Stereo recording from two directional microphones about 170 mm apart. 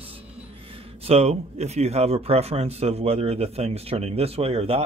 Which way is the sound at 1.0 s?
40° right (ahead or behind).